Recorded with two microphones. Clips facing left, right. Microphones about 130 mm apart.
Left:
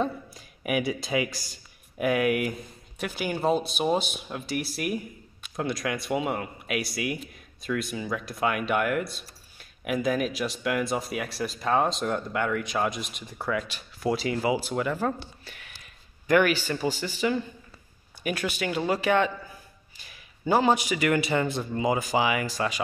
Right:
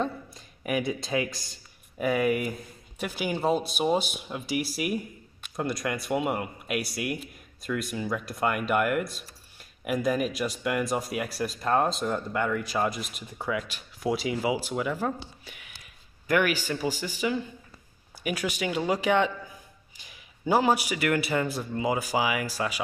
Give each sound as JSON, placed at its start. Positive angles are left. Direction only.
{"t": 0.0, "sound": "speech", "side_deg": 5}
{"t": 3.0, "sound": "a man's voice", "side_deg": -10}